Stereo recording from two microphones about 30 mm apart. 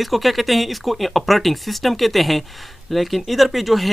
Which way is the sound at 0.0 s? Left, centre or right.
Centre.